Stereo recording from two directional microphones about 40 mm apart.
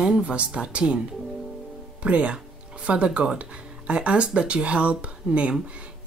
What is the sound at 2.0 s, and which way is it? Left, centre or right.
Speech, right.